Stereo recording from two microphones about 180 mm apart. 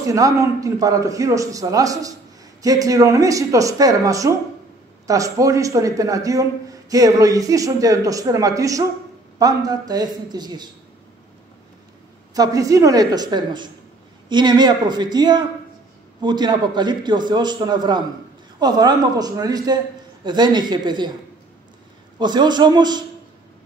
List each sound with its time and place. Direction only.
0.1 s a man's voice: 20° right (ahead or behind)
12.4 s a man's voice: 20° right (ahead or behind)
22.2 s a man's voice: 25° right (ahead or behind)